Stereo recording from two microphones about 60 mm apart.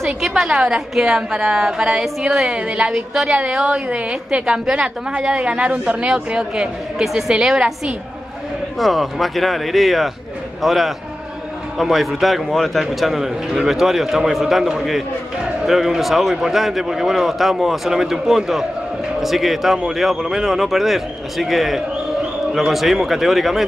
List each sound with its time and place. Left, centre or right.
0.0 s a woman's voice: centre
8.7 s a man's voice: centre